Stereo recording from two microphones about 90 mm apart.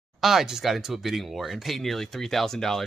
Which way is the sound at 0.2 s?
5° right (ahead or behind).